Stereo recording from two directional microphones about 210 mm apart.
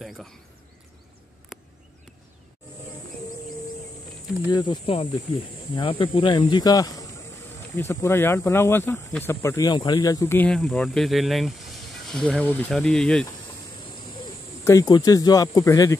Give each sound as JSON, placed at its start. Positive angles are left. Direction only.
{"t": 0.0, "sound": "speech", "side_deg": 0}
{"t": 4.5, "sound": "speech", "side_deg": 20}
{"t": 14.6, "sound": "speech", "side_deg": 15}